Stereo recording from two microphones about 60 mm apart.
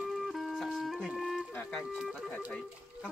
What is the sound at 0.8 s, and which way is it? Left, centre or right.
Speech, centre.